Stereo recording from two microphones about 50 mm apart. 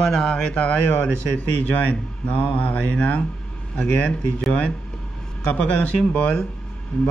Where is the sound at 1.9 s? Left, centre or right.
Left.